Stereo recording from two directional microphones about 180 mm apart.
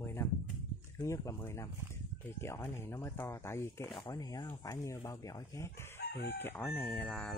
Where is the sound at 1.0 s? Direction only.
15° left (ahead or behind).